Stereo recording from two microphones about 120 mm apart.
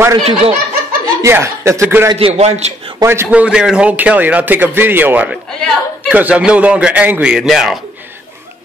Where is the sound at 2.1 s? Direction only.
60° right (ahead or behind).